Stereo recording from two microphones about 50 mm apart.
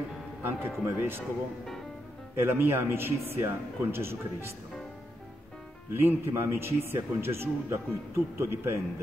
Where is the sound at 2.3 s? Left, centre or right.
Right.